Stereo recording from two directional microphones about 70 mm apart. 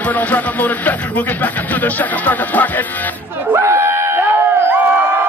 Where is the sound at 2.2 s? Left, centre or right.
Left.